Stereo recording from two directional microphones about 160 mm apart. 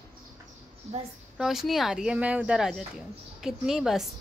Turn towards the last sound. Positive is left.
turn(degrees=-5)  # may be behind; listen again after turning